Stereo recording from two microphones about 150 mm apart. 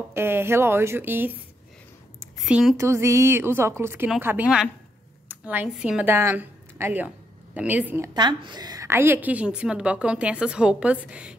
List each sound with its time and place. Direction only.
0.1 s a woman's voice: 15° right (ahead or behind)
2.4 s a woman's voice: 5° right (ahead or behind)
2.8 s a woman's voice: 20° right (ahead or behind)
8.1 s a woman's voice: 30° right (ahead or behind); by 11.3 s 5° right (ahead or behind)